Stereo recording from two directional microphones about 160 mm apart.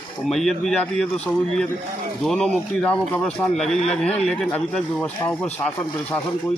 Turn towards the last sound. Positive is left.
turn(degrees=10)  # may be behind; listen again after turning